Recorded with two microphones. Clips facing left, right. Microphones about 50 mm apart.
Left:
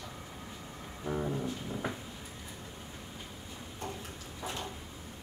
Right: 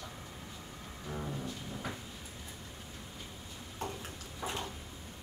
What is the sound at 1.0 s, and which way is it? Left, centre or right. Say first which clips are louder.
Music: left 6 dB; centre.